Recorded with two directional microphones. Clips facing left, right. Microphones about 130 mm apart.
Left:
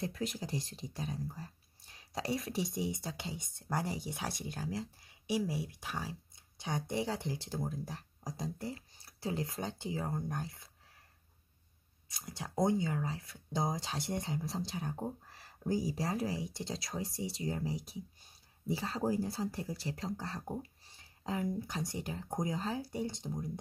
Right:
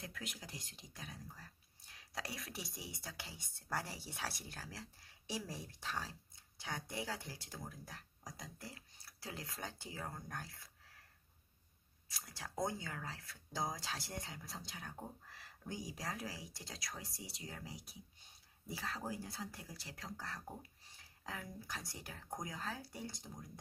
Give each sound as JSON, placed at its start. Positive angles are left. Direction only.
{"t": 0.0, "sound": "speech", "side_deg": 30}
{"t": 12.1, "sound": "speech", "side_deg": 20}